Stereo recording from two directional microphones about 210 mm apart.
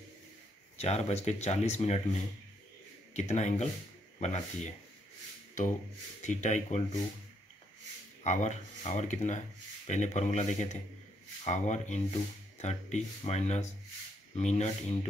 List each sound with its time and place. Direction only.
0.7 s speech: 30° left (ahead or behind)
3.2 s speech: 35° left (ahead or behind)
6.2 s speech: 35° left (ahead or behind)
8.2 s speech: 35° left (ahead or behind)